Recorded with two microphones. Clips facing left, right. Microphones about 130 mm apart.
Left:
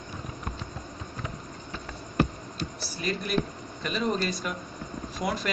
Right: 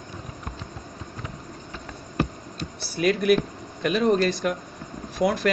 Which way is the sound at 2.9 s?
70° right (ahead or behind).